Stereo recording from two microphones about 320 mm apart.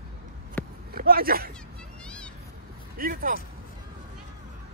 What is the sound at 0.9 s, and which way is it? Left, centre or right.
Speech, right.